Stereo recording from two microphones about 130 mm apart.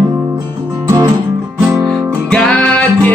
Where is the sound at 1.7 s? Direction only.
5° left (ahead or behind).